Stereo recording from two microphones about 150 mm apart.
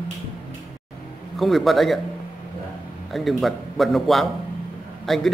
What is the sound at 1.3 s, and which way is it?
Speech, centre (ahead or behind).